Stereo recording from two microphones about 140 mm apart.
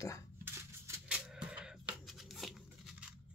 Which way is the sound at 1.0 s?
10° right (ahead or behind).